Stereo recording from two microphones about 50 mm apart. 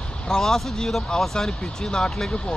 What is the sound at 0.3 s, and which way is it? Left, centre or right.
Speech, centre.